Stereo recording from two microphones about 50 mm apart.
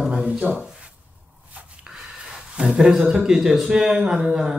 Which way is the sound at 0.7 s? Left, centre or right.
Centre.